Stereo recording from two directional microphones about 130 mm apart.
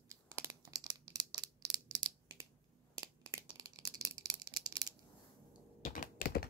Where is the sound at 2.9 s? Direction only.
25° right (ahead or behind).